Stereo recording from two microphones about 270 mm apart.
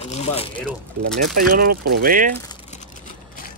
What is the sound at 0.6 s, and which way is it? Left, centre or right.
Speech, centre.